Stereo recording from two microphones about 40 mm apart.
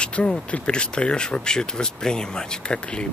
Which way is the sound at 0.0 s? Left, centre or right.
Left.